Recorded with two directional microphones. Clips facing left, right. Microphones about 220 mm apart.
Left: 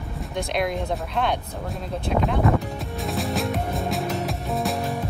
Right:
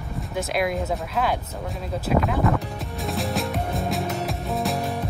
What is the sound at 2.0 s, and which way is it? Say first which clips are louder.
Music: even; 5° right (ahead or behind).